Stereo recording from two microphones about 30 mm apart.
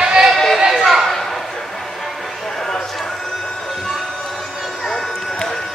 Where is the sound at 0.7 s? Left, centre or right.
Centre.